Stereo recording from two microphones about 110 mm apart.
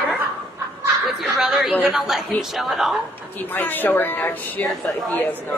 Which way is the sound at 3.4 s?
15° left (ahead or behind).